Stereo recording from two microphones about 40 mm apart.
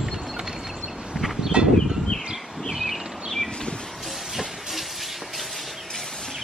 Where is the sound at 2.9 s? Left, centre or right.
Centre.